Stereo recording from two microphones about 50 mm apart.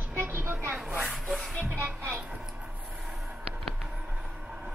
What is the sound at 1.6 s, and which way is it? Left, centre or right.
Music, right.